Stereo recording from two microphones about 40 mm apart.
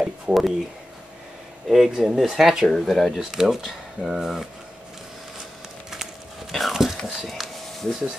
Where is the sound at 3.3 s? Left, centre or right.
Centre.